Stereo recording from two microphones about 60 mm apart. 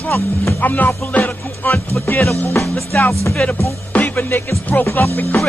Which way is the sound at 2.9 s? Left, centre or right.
Left.